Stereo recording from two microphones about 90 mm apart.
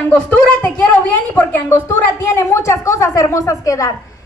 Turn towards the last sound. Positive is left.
turn(degrees=35)  # may be behind; listen again after turning